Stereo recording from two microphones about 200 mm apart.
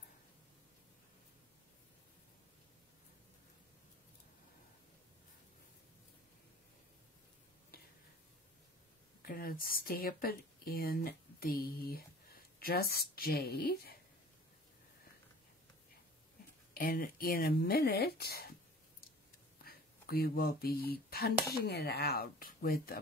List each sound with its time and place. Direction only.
9.2 s speech: 45° left (ahead or behind)
16.7 s speech: 45° left (ahead or behind)
19.6 s speech: 50° left (ahead or behind)